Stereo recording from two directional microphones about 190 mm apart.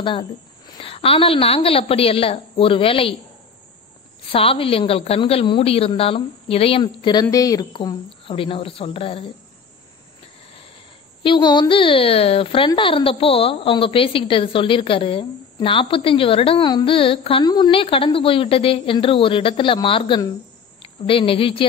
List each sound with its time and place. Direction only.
0.0 s a woman's voice: 25° left (ahead or behind)
4.3 s a woman's voice: 30° left (ahead or behind)
11.2 s a woman's voice: 25° left (ahead or behind)